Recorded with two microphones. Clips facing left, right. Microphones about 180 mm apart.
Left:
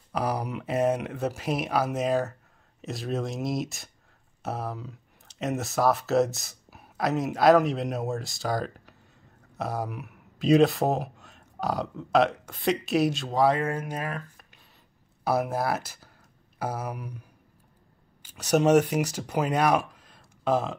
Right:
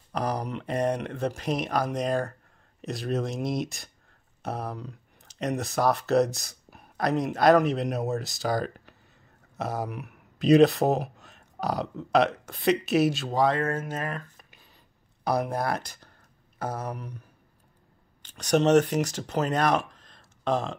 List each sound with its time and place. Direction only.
0.1 s speech: 10° left (ahead or behind)
13.5 s speech: 15° left (ahead or behind)